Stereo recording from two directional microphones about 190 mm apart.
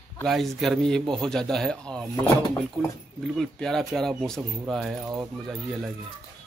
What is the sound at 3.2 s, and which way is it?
Speech, centre (ahead or behind).